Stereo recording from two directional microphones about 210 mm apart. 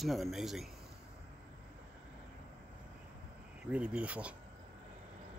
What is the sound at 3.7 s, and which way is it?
Speech, 5° right (ahead or behind).